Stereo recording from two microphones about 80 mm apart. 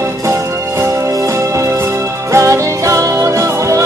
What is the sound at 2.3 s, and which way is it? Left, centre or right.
Music, right.